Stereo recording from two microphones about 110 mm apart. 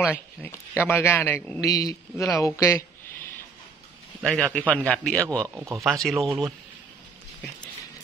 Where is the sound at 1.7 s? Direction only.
35° left (ahead or behind).